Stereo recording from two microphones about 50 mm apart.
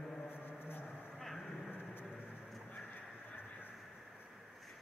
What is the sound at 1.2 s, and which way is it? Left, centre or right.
Vehicle, centre.